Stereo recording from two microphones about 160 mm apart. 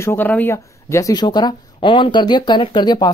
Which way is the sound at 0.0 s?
10° left (ahead or behind).